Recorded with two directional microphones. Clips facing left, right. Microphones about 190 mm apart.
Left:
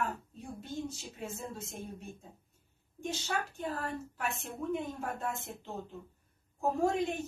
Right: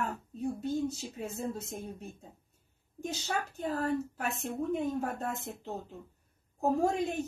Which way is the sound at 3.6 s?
40° right (ahead or behind).